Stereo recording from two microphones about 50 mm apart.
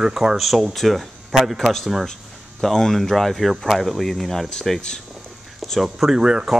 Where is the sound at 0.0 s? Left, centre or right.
Centre.